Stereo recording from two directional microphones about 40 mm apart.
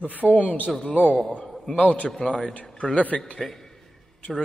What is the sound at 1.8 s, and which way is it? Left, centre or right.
Speech, left.